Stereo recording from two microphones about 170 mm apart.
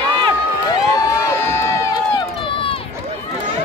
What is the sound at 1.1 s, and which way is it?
Crowd, 20° left (ahead or behind).